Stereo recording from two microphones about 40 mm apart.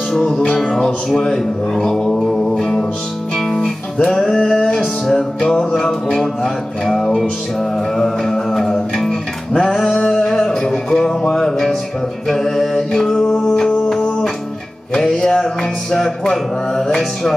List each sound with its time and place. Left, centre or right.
0.1 s music: centre
3.3 s guitar: centre
4.7 s music: centre
7.9 s a capella: centre
8.9 s music: centre
12.3 s mantra: centre
12.9 s music: centre